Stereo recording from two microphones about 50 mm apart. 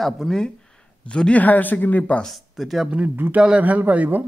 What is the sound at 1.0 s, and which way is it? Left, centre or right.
Speech, left.